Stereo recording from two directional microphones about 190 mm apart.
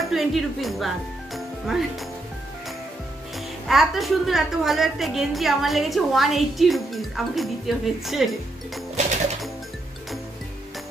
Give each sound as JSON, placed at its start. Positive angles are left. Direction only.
{"t": 0.1, "sound": "speech", "side_deg": 0}
{"t": 3.6, "sound": "a woman's voice", "side_deg": 0}